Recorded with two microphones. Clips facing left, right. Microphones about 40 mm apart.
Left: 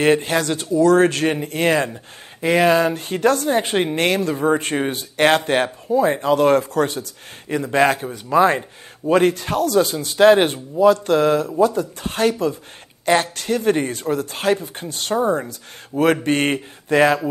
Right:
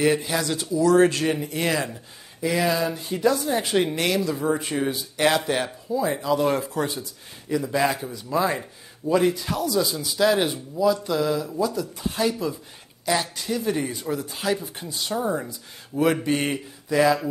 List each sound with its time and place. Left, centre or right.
0.0 s a man's voice: left
3.4 s a man's voice: left
15.1 s speech: left